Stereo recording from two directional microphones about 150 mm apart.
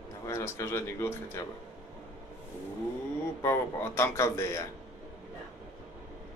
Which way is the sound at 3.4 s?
20° left (ahead or behind).